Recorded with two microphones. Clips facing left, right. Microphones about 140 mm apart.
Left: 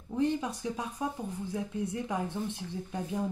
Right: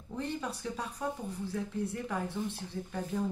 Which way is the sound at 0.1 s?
15° left (ahead or behind).